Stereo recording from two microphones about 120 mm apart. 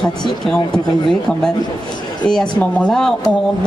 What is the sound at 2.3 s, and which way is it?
Speech, 5° left (ahead or behind).